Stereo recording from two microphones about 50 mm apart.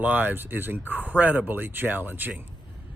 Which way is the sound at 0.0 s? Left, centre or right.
Right.